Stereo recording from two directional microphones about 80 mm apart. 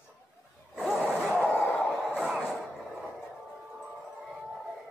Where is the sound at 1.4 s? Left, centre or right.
Left.